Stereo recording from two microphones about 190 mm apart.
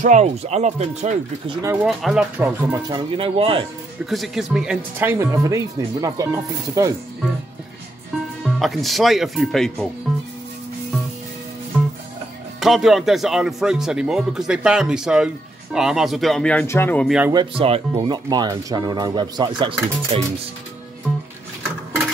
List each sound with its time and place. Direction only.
0.0 s speech: 35° right (ahead or behind)
1.5 s speech: 15° right (ahead or behind)
1.8 s speech: centre (ahead or behind)
2.4 s speech: 15° right (ahead or behind)
4.0 s speech: centre (ahead or behind); by 6.9 s 15° right (ahead or behind)
8.5 s speech: centre (ahead or behind)
12.5 s speech: centre (ahead or behind)
17.3 s speech: 25° right (ahead or behind)